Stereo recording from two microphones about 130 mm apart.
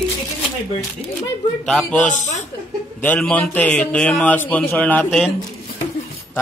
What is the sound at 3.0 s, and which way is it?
A man's voice, 10° left (ahead or behind).